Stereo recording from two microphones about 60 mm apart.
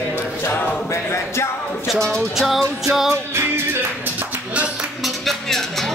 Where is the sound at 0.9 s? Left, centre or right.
Left.